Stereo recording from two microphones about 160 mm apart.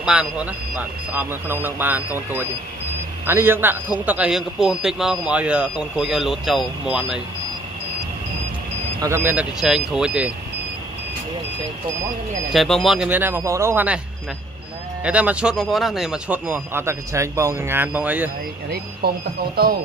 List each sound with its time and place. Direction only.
0.0 s a man's voice: 5° right (ahead or behind)
9.0 s speech: 15° right (ahead or behind)
12.5 s speech: centre (ahead or behind)
15.0 s speech: 10° right (ahead or behind)
19.0 s speech: 85° right